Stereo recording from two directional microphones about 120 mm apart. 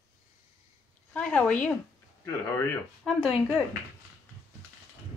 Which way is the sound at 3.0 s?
Centre (ahead or behind).